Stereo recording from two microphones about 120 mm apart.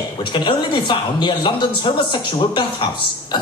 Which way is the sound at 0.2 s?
40° left (ahead or behind).